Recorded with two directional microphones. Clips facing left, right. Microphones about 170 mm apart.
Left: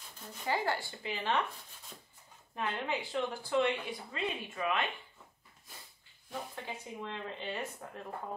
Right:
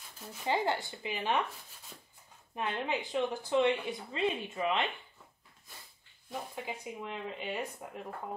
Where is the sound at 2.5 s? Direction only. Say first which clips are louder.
Right 2 dB; 15° right (ahead or behind).